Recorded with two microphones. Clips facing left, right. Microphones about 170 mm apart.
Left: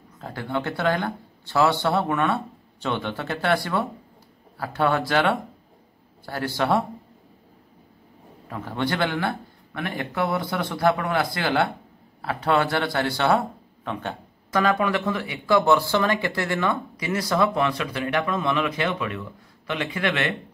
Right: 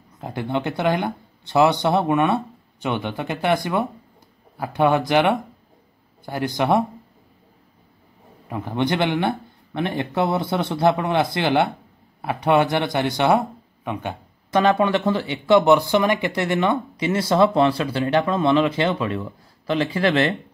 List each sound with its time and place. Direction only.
0.2 s speech: 20° right (ahead or behind)
8.5 s speech: 15° right (ahead or behind); by 20.3 s 30° right (ahead or behind)